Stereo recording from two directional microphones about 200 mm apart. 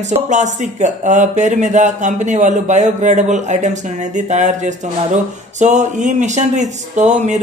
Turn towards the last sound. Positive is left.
turn(degrees=-35)  # may be behind; listen again after turning